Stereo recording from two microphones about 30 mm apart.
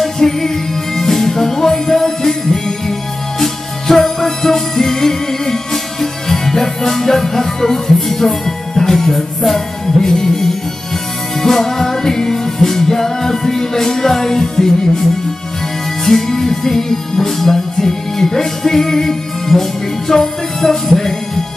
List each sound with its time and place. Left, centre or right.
0.0 s music: centre
16.1 s music: centre